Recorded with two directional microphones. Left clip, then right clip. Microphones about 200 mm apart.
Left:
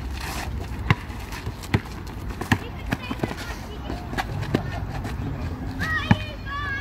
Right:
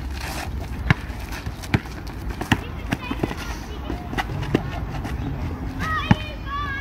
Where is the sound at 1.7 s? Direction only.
15° right (ahead or behind).